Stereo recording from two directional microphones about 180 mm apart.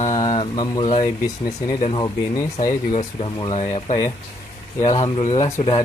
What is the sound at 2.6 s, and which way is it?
Speech, 40° left (ahead or behind).